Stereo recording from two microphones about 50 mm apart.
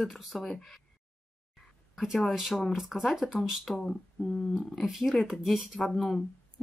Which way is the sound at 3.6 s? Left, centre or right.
Centre.